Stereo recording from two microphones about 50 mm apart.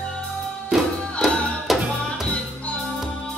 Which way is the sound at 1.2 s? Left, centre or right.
Centre.